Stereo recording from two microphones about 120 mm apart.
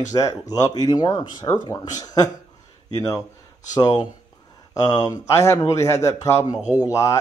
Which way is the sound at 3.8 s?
35° left (ahead or behind).